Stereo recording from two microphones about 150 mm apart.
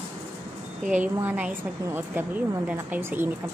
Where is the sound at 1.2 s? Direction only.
10° right (ahead or behind).